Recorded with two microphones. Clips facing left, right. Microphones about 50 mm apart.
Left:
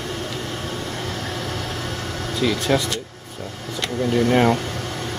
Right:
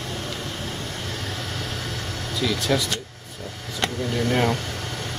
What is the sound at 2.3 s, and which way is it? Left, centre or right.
Speech, left.